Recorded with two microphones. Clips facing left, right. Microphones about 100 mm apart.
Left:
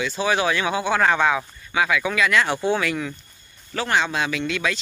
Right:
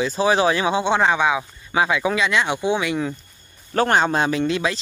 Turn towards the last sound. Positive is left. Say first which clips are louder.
# right 4 dB
turn(degrees=-30)  # may be behind; listen again after turning